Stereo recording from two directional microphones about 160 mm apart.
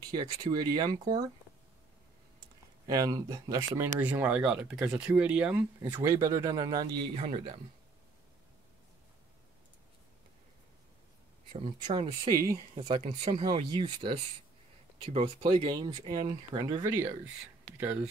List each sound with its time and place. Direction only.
0.1 s speech: 25° right (ahead or behind)
2.9 s speech: 20° right (ahead or behind)
7.2 s speech: 40° right (ahead or behind)
11.5 s speech: 35° right (ahead or behind)
12.3 s speech: 20° right (ahead or behind)
13.0 s speech: 45° right (ahead or behind); by 16.9 s 25° right (ahead or behind)
16.9 s speech: 15° right (ahead or behind)